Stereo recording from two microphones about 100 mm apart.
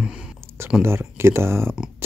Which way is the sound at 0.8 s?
25° right (ahead or behind).